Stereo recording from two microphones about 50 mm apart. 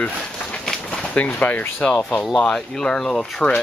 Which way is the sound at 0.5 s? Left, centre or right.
Centre.